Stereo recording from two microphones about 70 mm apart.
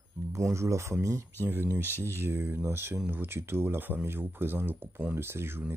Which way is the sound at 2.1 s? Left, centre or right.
Right.